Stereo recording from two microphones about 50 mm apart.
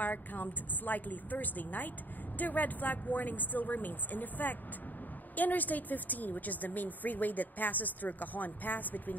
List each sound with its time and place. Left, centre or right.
0.0 s speech: left